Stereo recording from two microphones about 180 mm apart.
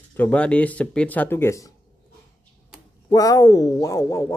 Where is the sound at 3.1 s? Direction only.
20° left (ahead or behind).